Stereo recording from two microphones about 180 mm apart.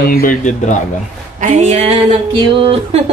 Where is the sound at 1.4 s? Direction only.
40° right (ahead or behind).